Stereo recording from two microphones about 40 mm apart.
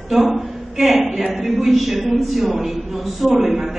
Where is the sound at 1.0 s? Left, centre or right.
Centre.